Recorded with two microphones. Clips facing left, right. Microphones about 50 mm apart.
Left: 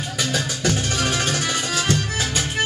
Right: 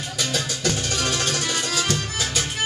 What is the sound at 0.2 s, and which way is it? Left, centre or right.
Music, centre.